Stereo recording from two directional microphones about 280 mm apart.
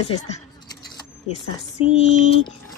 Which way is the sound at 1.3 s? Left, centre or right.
Left.